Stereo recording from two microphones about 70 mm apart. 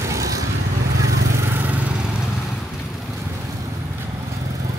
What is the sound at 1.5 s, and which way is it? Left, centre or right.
Vehicle, right.